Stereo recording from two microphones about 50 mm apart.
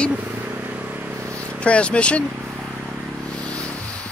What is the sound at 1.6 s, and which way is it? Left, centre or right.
Speech, left.